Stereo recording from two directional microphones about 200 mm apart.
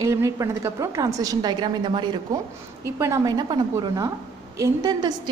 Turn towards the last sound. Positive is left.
turn(degrees=-20)  # may be behind; listen again after turning